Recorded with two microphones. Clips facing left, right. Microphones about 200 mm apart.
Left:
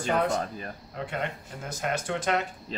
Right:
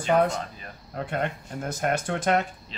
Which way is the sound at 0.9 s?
50° right (ahead or behind).